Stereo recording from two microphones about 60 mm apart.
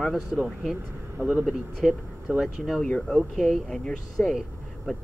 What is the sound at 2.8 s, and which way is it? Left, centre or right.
Speech, centre.